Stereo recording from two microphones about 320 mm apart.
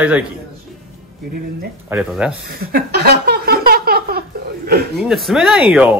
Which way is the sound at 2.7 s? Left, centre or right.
Right.